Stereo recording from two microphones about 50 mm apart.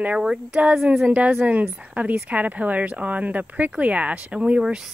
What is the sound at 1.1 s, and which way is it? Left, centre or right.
Speech, right.